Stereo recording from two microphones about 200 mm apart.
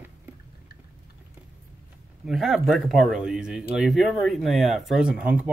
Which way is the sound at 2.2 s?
Centre (ahead or behind).